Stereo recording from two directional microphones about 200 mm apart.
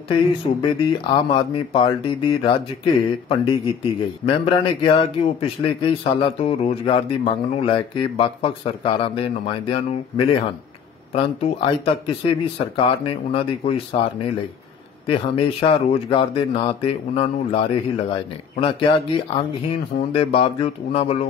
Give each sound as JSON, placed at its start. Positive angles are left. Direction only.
{"t": 0.1, "sound": "speech", "side_deg": 25}
{"t": 15.0, "sound": "speech", "side_deg": 30}